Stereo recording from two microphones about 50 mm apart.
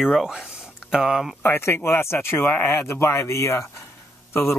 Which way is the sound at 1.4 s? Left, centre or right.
Left.